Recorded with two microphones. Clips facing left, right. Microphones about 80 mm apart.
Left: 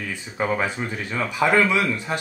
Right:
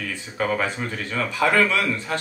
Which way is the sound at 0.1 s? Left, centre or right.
Centre.